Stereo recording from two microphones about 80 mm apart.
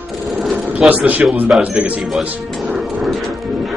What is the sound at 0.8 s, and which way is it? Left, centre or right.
A man's voice, centre.